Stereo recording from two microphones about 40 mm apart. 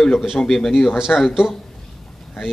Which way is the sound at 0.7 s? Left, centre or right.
Centre.